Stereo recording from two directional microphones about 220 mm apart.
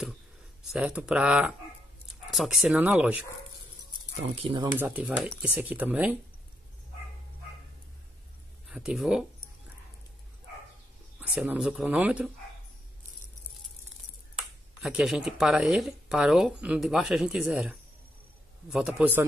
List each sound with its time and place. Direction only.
0.7 s speech: 5° right (ahead or behind)
4.4 s speech: 20° right (ahead or behind)
4.7 s speech: 10° right (ahead or behind)
8.6 s speech: 5° right (ahead or behind)
11.1 s speech: 5° right (ahead or behind)
14.8 s speech: 5° right (ahead or behind)